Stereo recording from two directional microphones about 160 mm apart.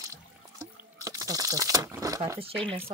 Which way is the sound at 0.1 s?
20° right (ahead or behind).